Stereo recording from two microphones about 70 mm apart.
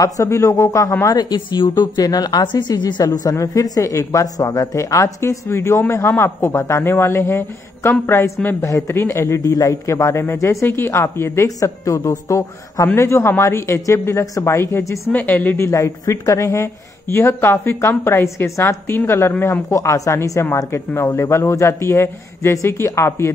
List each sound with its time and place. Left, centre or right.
0.0 s speech: left
1.0 s speech: left
8.5 s speech: left
8.9 s speech: left
11.4 s speech: left
15.1 s speech: left
15.6 s speech: left
19.7 s speech: left